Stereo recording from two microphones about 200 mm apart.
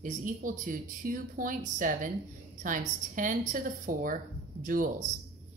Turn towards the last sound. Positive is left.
turn(degrees=-40)  # may be behind; listen again after turning